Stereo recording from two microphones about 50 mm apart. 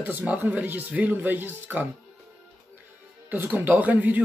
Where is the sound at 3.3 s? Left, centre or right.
Right.